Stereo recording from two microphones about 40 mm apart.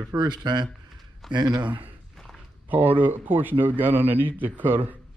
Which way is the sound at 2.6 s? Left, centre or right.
Right.